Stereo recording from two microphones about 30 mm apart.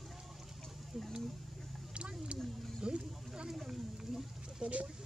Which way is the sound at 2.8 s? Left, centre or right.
Right.